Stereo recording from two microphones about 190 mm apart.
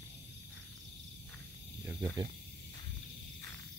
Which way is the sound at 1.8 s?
20° right (ahead or behind).